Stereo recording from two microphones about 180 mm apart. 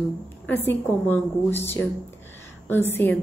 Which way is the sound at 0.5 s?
10° left (ahead or behind).